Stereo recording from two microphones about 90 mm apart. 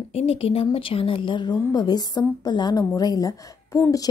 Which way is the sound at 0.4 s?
90° left.